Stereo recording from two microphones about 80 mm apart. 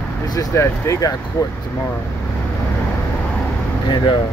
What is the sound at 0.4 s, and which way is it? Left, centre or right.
Speech, left.